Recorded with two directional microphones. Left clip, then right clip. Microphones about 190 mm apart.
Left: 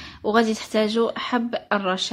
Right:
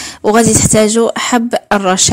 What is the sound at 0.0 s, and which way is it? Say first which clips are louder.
A woman's voice: right 10 dB; 55° right (ahead or behind).